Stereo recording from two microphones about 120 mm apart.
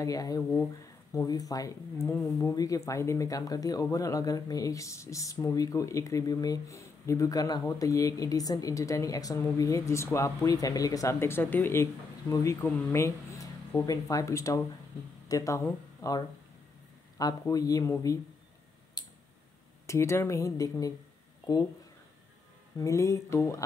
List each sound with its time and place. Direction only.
0.0 s speech: 30° left (ahead or behind)
0.4 s speech: 15° left (ahead or behind)
1.1 s speech: 30° left (ahead or behind)
19.0 s tick: 35° left (ahead or behind)
19.9 s speech: 20° left (ahead or behind)
22.8 s speech: 25° left (ahead or behind)